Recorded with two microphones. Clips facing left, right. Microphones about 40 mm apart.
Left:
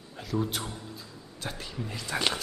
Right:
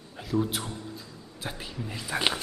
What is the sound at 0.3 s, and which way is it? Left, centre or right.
Speech, centre.